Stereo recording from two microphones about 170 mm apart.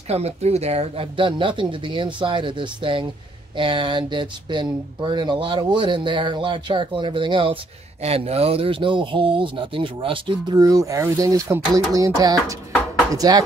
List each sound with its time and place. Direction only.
0.1 s speech: 40° right (ahead or behind); by 13.4 s 20° right (ahead or behind)